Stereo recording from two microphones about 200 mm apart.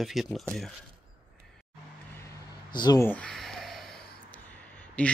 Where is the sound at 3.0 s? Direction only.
5° left (ahead or behind).